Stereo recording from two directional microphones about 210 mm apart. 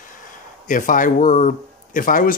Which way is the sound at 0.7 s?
40° left (ahead or behind).